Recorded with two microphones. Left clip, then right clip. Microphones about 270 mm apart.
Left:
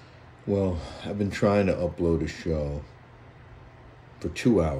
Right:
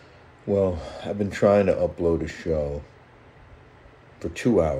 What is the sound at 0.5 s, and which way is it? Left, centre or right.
Speech, centre.